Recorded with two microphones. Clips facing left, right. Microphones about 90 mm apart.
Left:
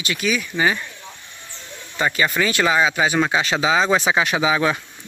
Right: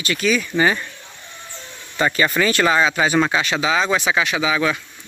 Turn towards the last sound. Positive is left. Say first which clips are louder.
# left 1 dB
turn(degrees=30)  # may be behind; listen again after turning